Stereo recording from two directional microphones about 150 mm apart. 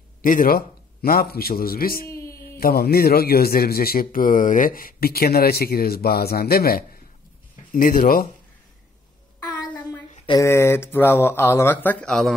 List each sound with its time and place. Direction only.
0.2 s a man's voice: 65° left (ahead or behind)
2.0 s a sound: 20° left (ahead or behind)
2.5 s a man's voice: 90° left
7.7 s speech: 70° left (ahead or behind)
10.4 s speech: 15° left (ahead or behind)